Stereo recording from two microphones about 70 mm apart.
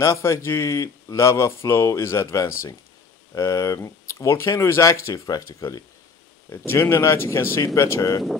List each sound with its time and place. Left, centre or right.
0.0 s speech: left
6.5 s speech: left